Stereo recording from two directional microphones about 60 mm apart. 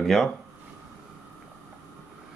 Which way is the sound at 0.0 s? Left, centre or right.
Centre.